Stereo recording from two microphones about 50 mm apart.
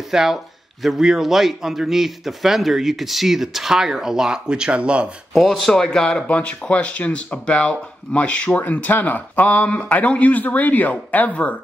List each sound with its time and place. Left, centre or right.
0.1 s a man's voice: centre; by 5.1 s right
5.3 s speech: centre
5.9 s speech: centre
6.2 s speech: left